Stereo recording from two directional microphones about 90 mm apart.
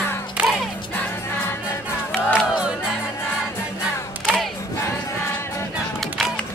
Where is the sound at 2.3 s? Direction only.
10° right (ahead or behind).